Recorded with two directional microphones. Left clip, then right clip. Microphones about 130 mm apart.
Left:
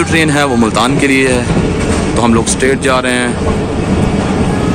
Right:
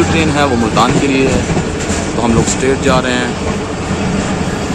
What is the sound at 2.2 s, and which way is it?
Speech, 20° left (ahead or behind).